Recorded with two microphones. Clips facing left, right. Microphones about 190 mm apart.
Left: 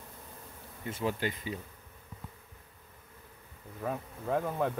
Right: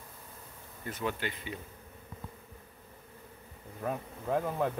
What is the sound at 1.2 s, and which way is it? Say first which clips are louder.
Speech: left 3 dB; 35° left (ahead or behind).